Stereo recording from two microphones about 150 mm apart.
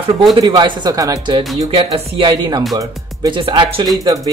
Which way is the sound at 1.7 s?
40° right (ahead or behind).